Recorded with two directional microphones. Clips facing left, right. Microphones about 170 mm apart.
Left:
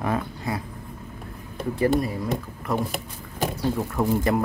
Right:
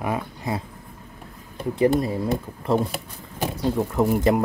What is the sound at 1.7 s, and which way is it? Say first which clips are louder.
Speech: right 2 dB; 20° right (ahead or behind).